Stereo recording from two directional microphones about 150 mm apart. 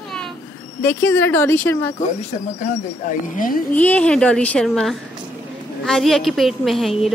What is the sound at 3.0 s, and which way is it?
Speech, 60° left (ahead or behind).